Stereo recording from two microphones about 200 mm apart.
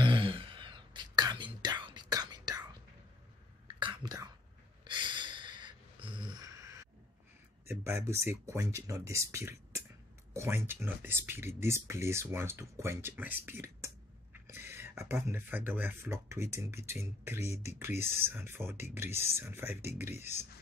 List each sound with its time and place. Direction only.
0.0 s whispering: 25° right (ahead or behind)
4.8 s a sound: 25° right (ahead or behind)
7.6 s speech: 10° right (ahead or behind)